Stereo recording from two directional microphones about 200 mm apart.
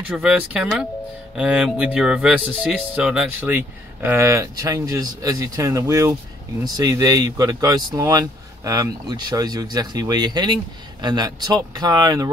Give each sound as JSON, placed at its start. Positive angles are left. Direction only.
{"t": 0.1, "sound": "speech", "side_deg": -5}